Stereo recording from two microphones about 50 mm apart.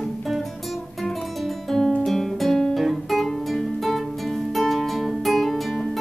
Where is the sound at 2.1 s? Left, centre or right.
Centre.